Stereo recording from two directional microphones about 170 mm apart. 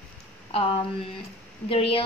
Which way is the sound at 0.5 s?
35° left (ahead or behind).